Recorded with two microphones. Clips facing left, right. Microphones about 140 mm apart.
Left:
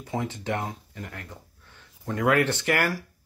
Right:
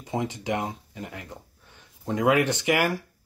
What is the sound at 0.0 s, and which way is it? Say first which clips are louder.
Speech: right 1 dB; 20° right (ahead or behind).